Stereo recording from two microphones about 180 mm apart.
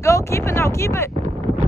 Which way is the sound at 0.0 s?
15° left (ahead or behind).